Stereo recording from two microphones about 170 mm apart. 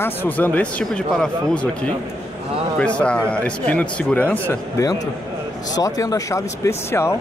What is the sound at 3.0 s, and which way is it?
A man's voice, 5° left (ahead or behind).